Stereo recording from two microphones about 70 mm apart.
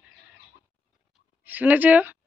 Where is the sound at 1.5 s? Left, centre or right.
Right.